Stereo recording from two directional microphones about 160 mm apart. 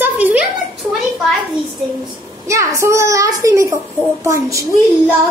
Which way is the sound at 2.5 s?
20° right (ahead or behind).